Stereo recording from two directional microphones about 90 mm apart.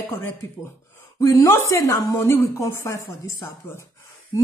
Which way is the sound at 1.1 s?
35° left (ahead or behind).